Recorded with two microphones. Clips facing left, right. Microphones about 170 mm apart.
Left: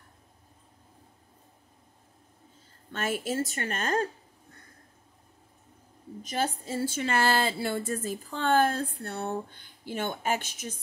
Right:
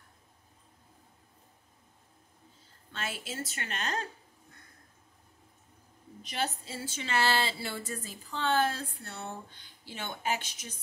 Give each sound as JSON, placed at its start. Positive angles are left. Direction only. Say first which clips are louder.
{"t": 2.9, "sound": "a woman's voice", "louder": "left 9 dB", "side_deg": 50}
{"t": 6.2, "sound": "a woman's voice", "louder": "left 4 dB", "side_deg": 45}